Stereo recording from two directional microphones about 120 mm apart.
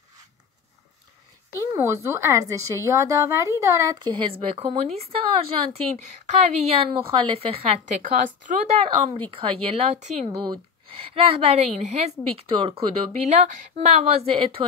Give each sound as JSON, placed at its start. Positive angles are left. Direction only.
{"t": 1.5, "sound": "a woman's voice", "side_deg": -25}
{"t": 4.2, "sound": "a woman's voice", "side_deg": -55}
{"t": 6.0, "sound": "a woman's voice", "side_deg": -65}
{"t": 7.9, "sound": "a woman's voice", "side_deg": -90}
{"t": 10.4, "sound": "a woman's voice", "side_deg": -45}
{"t": 12.4, "sound": "a woman's voice", "side_deg": -50}